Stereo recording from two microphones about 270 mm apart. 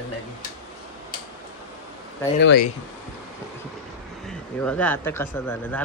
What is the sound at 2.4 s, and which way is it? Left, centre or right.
Speech, left.